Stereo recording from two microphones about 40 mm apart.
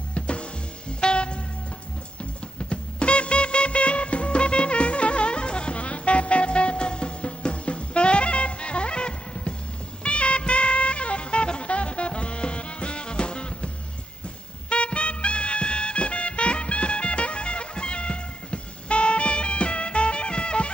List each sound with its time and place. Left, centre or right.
0.1 s music: left
2.7 s music: left
14.7 s music: left